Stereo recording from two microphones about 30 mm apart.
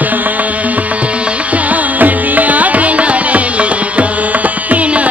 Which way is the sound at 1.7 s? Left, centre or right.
Right.